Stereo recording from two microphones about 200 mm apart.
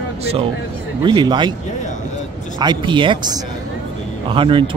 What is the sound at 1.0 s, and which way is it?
Speech, 20° right (ahead or behind).